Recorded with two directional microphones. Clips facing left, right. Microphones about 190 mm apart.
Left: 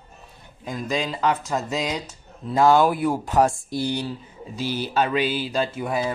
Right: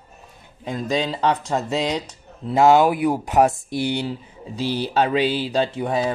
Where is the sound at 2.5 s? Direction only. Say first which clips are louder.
Right 2 dB; 20° right (ahead or behind).